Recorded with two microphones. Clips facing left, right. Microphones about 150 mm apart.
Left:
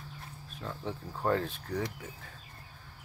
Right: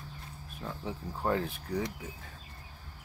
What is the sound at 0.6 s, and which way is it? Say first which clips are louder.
Speech: even; 10° right (ahead or behind).